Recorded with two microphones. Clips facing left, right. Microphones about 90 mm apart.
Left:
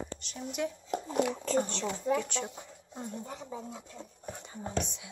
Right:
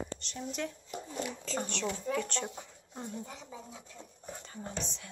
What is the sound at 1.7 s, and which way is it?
Speech, 30° left (ahead or behind).